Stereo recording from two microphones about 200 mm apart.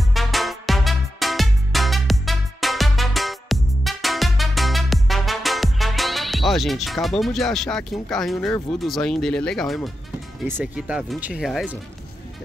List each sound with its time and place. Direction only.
0.1 s music: centre (ahead or behind)
10.4 s speech: 5° right (ahead or behind)